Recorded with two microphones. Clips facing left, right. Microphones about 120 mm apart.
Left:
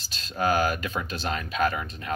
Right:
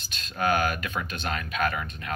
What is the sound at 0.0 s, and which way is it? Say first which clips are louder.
Speech: left 1 dB; 30° left (ahead or behind).